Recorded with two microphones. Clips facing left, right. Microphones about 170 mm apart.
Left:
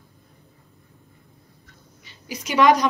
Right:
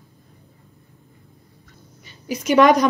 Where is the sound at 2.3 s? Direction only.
50° right (ahead or behind).